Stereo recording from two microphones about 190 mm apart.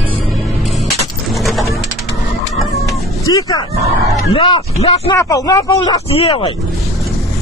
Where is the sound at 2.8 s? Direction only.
20° left (ahead or behind).